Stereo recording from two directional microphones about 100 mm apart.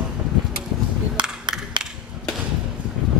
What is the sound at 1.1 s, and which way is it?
Music, 50° right (ahead or behind).